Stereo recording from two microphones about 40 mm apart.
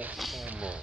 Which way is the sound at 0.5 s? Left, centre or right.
Right.